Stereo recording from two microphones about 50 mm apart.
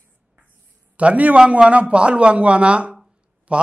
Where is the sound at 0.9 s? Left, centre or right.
Right.